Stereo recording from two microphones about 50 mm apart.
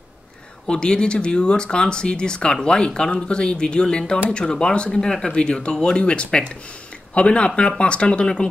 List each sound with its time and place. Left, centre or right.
0.7 s speech: centre